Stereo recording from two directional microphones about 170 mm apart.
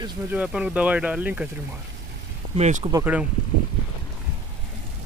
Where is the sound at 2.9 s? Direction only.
10° right (ahead or behind).